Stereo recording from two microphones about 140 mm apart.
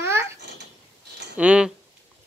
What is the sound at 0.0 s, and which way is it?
Babbling, 15° right (ahead or behind).